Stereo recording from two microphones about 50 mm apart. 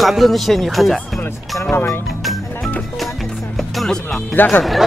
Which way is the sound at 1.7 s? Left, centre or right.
Left.